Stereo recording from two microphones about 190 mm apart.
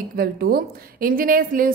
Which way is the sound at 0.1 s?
55° right (ahead or behind).